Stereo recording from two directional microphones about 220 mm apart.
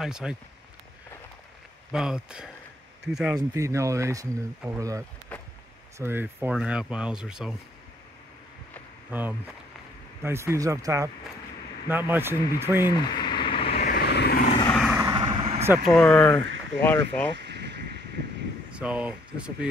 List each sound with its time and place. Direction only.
0.0 s speech: 5° right (ahead or behind)
1.9 s speech: 5° right (ahead or behind)
3.3 s speech: 15° right (ahead or behind)
5.3 s a sound: 5° left (ahead or behind)
5.9 s speech: 10° right (ahead or behind)
9.1 s speech: 5° right (ahead or behind)
13.1 s a sound: 20° left (ahead or behind)
13.8 s vehicle: 45° left (ahead or behind)
14.7 s vehicle: centre (ahead or behind)
15.0 s vehicle: 20° right (ahead or behind)
15.9 s speech: 5° left (ahead or behind)
17.4 s a sound: 50° right (ahead or behind)
18.7 s speech: 5° right (ahead or behind)